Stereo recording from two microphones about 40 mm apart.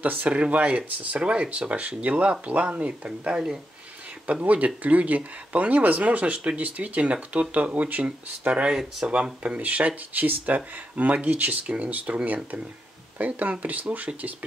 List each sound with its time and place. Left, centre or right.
0.0 s speech: right
0.3 s speech: right
4.3 s speech: right
8.5 s speech: right
9.6 s speech: right
11.6 s speech: right
13.2 s speech: right